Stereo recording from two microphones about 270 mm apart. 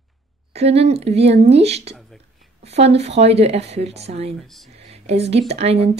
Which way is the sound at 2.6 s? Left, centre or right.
Right.